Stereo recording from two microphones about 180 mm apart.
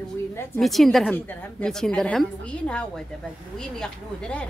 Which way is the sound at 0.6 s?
Centre (ahead or behind).